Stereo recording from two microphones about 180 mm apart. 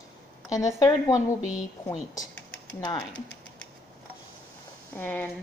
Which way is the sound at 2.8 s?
20° left (ahead or behind).